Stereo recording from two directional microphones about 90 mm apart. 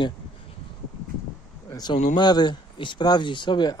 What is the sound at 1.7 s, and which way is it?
Speech, 50° left (ahead or behind).